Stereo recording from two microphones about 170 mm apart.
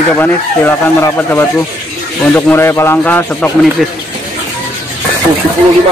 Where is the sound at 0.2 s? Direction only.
15° left (ahead or behind).